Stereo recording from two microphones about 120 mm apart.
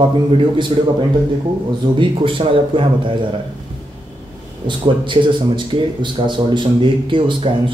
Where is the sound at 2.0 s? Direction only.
45° right (ahead or behind).